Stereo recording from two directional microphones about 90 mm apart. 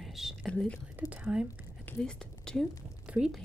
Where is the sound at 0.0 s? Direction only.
Centre (ahead or behind).